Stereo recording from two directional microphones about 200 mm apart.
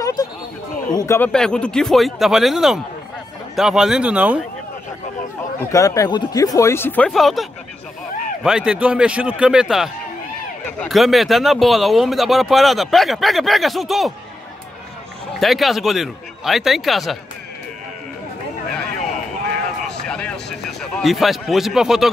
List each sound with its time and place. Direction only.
0.0 s a sound: 20° left (ahead or behind)
0.9 s speech: 15° left (ahead or behind); by 4.4 s 5° right (ahead or behind)
5.7 s speech: 15° left (ahead or behind); by 7.4 s centre (ahead or behind)
8.5 s speech: 5° right (ahead or behind)
15.4 s speech: centre (ahead or behind)
18.7 s a sound: 5° left (ahead or behind)